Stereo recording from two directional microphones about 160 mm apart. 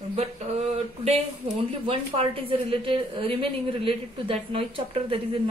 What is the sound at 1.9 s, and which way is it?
A woman's voice, 35° right (ahead or behind).